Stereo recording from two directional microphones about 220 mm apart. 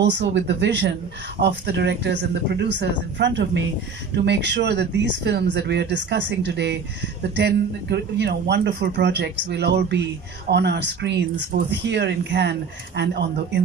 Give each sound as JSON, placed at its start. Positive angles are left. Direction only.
{"t": 0.0, "sound": "speech", "side_deg": -55}